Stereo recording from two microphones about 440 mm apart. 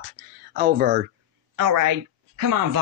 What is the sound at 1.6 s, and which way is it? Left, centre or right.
A woman's voice, right.